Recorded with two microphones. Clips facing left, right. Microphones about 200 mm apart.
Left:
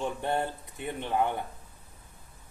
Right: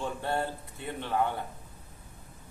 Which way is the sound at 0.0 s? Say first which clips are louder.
Left 2 dB; 15° left (ahead or behind).